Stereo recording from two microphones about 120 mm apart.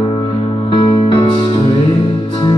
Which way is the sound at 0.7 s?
45° left (ahead or behind).